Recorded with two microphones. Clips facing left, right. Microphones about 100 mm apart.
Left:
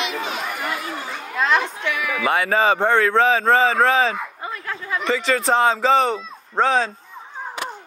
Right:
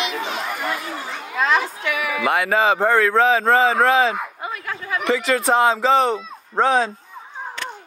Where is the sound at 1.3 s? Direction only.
5° right (ahead or behind).